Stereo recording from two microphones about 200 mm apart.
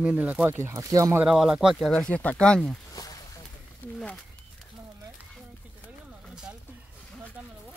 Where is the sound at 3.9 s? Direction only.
Centre (ahead or behind).